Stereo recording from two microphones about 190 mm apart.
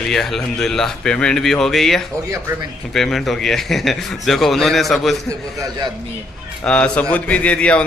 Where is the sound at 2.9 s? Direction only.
Centre (ahead or behind).